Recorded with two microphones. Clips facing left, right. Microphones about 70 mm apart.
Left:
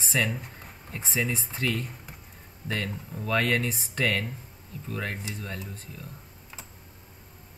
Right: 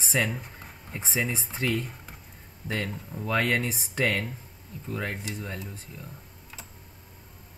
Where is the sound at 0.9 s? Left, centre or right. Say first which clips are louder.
Even; right.